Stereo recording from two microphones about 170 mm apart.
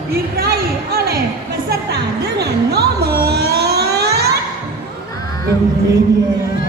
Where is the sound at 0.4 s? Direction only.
65° right (ahead or behind).